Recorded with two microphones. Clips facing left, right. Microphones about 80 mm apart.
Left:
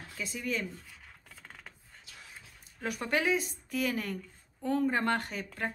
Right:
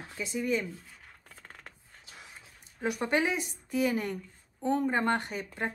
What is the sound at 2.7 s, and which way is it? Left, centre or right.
Speech, centre.